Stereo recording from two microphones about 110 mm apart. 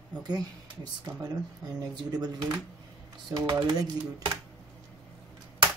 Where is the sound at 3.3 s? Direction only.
40° right (ahead or behind).